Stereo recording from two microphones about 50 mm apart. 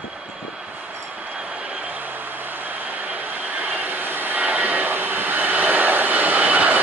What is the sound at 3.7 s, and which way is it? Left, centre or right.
Vehicle, right.